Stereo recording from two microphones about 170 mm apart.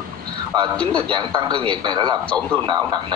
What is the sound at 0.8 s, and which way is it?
Speech, 5° left (ahead or behind).